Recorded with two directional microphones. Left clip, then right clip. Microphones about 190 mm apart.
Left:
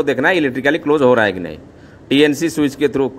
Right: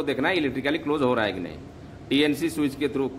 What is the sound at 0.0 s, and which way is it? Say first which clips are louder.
A man's voice: left 10 dB; 35° left (ahead or behind).